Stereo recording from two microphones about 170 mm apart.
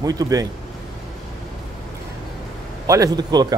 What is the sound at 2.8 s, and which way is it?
Speech, 20° right (ahead or behind).